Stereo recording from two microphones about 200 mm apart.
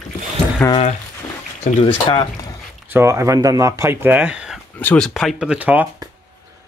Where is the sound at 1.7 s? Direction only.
25° left (ahead or behind).